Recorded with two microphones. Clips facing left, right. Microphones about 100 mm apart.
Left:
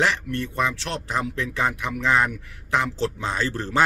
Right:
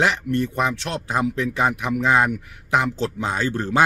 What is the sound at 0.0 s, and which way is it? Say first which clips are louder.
Speech: right 3 dB; 20° right (ahead or behind).